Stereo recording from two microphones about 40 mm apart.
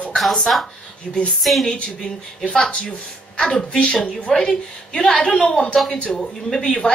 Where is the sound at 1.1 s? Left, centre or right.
Left.